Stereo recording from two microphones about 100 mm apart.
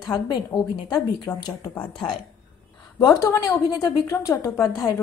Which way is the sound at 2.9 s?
35° left (ahead or behind).